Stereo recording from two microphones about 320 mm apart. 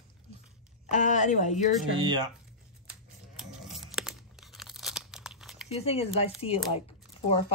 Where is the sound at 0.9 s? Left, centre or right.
Left.